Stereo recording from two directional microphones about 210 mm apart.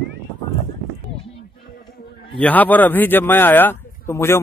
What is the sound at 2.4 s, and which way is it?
Speech, 10° left (ahead or behind).